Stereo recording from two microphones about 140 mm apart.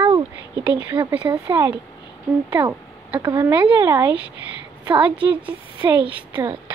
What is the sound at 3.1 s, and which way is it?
Speech, 30° right (ahead or behind).